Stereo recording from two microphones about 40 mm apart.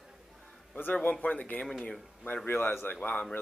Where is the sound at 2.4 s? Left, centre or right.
Left.